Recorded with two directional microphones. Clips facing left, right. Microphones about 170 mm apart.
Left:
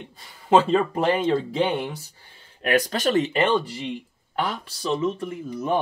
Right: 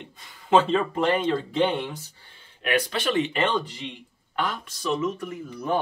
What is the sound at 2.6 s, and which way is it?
Speech, 40° left (ahead or behind).